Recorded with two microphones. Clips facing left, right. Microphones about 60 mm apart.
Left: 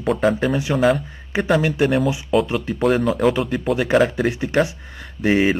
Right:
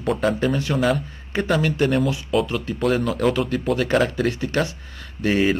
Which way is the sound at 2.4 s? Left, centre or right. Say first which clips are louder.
Left 3 dB; left.